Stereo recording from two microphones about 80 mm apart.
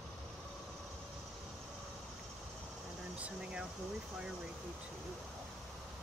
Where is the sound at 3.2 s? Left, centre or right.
Centre.